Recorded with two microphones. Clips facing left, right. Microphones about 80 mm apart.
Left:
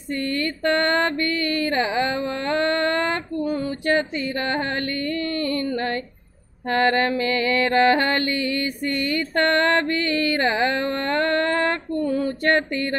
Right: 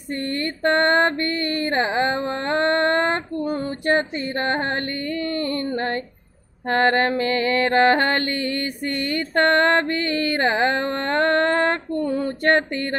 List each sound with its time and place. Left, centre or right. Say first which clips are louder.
0.4 s mantra: right 3 dB; right